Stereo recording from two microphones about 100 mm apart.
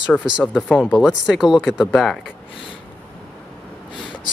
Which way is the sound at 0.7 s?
15° left (ahead or behind).